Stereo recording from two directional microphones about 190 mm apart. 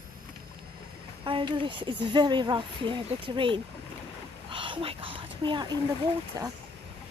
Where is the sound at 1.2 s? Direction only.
25° right (ahead or behind).